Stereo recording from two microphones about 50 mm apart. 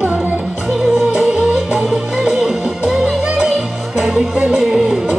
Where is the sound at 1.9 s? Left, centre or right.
Centre.